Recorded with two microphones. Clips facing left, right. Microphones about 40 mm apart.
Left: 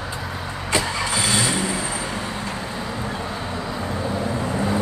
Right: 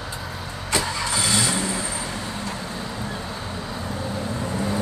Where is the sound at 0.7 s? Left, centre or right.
Centre.